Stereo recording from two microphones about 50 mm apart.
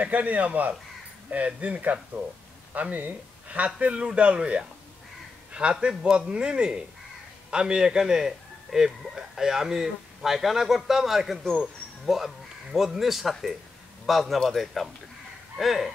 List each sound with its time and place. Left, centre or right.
0.0 s a man's voice: right; by 15.9 s centre